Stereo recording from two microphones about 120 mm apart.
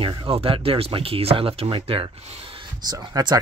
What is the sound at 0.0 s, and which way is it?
Speech, 45° right (ahead or behind).